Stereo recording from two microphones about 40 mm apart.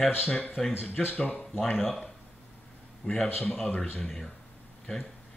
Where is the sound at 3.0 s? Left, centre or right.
Left.